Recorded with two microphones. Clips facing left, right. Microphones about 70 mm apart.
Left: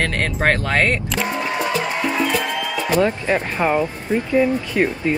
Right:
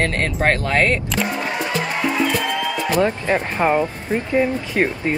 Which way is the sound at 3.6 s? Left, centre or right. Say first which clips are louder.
Right 1 dB; centre.